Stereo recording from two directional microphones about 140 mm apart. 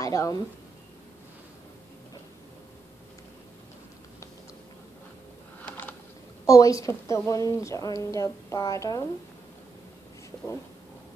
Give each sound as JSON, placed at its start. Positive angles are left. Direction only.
{"t": 0.0, "sound": "speech", "side_deg": 25}
{"t": 5.7, "sound": "a sound", "side_deg": 10}
{"t": 6.4, "sound": "speech", "side_deg": 25}